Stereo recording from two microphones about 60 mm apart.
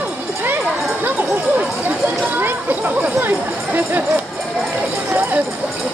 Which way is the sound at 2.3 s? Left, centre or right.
Right.